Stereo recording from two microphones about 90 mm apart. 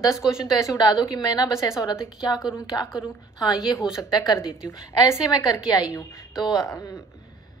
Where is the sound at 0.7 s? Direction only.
50° left (ahead or behind).